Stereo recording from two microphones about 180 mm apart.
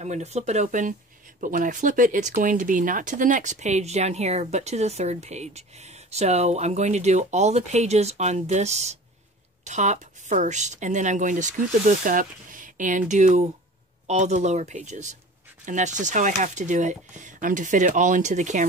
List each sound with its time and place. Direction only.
0.0 s speech: 40° right (ahead or behind)